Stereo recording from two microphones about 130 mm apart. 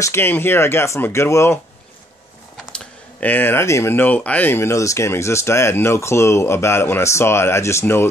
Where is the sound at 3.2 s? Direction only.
15° left (ahead or behind).